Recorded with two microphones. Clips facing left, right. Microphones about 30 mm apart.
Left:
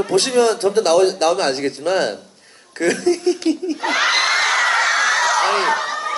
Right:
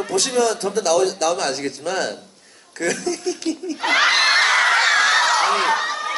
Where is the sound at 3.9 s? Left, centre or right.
Right.